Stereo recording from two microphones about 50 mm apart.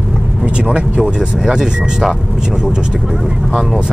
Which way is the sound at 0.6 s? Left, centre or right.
Right.